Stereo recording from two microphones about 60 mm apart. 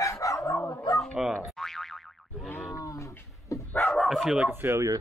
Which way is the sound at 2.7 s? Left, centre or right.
Left.